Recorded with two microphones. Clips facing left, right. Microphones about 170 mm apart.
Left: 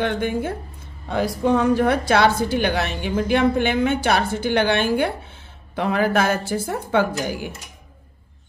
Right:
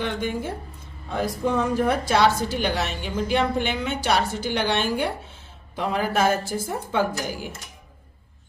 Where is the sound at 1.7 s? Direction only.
75° left (ahead or behind).